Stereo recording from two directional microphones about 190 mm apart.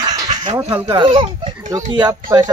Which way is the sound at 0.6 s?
20° right (ahead or behind).